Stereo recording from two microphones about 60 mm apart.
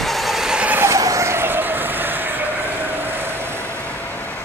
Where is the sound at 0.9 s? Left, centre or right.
Right.